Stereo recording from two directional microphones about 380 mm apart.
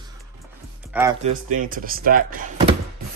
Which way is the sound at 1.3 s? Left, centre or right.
Right.